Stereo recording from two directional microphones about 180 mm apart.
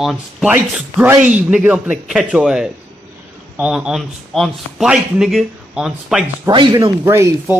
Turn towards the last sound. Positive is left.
turn(degrees=-15)  # may be behind; listen again after turning